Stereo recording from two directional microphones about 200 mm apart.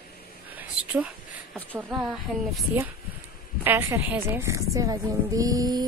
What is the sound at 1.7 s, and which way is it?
Speech, 5° right (ahead or behind).